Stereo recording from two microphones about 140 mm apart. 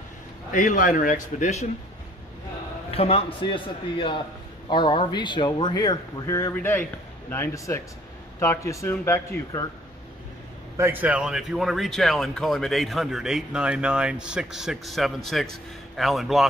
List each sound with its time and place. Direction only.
0.5 s a man's voice: 65° left (ahead or behind)
2.9 s a man's voice: 45° left (ahead or behind); by 9.2 s 20° left (ahead or behind)
10.8 s speech: 15° right (ahead or behind)